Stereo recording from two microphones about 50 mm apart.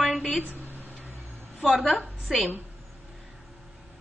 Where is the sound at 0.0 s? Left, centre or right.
Centre.